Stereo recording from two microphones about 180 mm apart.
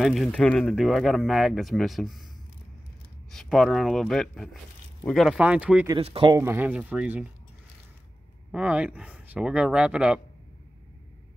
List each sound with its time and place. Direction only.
0.0 s speech: centre (ahead or behind)
3.3 s speech: centre (ahead or behind)
5.9 s speech: 30° right (ahead or behind)
6.3 s speech: 15° right (ahead or behind)
8.5 s speech: 5° right (ahead or behind)